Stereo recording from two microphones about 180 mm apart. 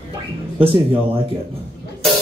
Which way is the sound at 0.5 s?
30° right (ahead or behind).